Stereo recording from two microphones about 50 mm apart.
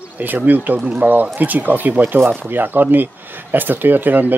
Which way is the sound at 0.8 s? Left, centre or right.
Right.